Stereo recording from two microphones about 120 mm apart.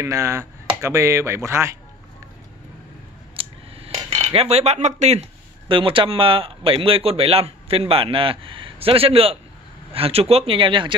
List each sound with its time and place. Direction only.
0.0 s speech: 25° right (ahead or behind)
3.3 s dishes: 55° right (ahead or behind)
5.7 s speech: 45° right (ahead or behind)